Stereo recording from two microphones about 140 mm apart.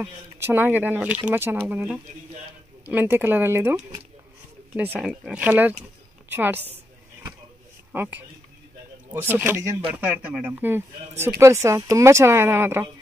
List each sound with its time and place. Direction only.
0.4 s speech: 15° right (ahead or behind)
4.7 s speech: 10° right (ahead or behind)
7.9 s speech: 15° right (ahead or behind)